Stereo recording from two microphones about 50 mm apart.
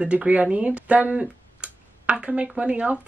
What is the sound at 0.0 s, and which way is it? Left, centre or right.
Speech, right.